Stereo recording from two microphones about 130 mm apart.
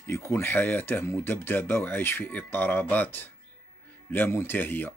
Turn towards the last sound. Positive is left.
turn(degrees=15)  # may be behind; listen again after turning